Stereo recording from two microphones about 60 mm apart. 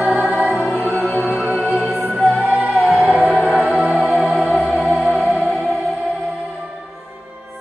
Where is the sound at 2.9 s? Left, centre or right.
Centre.